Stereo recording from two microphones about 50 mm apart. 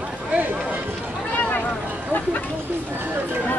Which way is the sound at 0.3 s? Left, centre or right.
Right.